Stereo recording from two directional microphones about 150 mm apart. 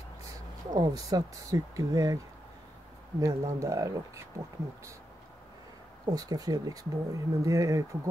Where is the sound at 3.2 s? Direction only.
20° right (ahead or behind).